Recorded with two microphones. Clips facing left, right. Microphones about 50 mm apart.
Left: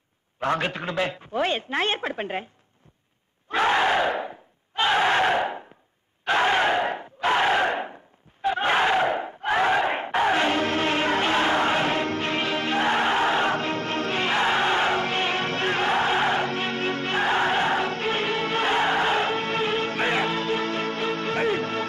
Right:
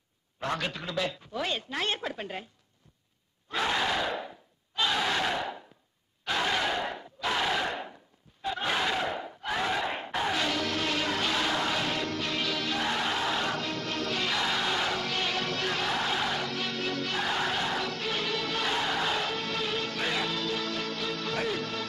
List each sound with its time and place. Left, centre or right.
0.4 s a woman's voice: left
3.4 s crowd: left